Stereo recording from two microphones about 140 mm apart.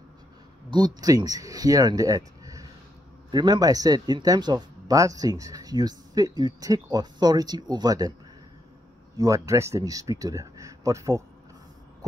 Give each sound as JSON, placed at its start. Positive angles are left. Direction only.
{"t": 0.7, "sound": "speech", "side_deg": -30}
{"t": 9.1, "sound": "speech", "side_deg": -25}